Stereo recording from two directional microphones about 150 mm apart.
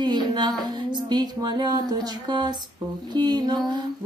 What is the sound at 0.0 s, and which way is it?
Female singing, 30° right (ahead or behind).